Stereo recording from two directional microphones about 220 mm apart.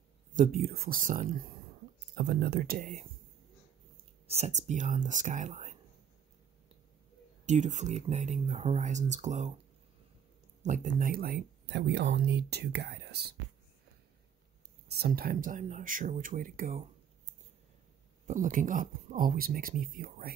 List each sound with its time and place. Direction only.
0.3 s speech: 40° right (ahead or behind)
2.0 s speech: 45° right (ahead or behind); by 5.8 s 30° right (ahead or behind)
7.4 s speech: 35° right (ahead or behind)
10.6 s speech: 35° right (ahead or behind)
14.9 s speech: 45° right (ahead or behind)
18.2 s speech: 35° right (ahead or behind)